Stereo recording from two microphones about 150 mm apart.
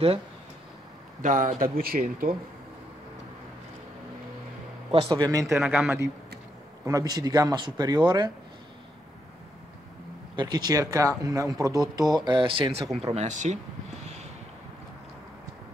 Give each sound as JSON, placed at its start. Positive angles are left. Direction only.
{"t": 1.2, "sound": "speech", "side_deg": -60}
{"t": 4.9, "sound": "a man's voice", "side_deg": -30}
{"t": 5.6, "sound": "a man's voice", "side_deg": -5}
{"t": 6.8, "sound": "a man's voice", "side_deg": -25}
{"t": 10.3, "sound": "a man's voice", "side_deg": -30}
{"t": 13.0, "sound": "speech", "side_deg": -45}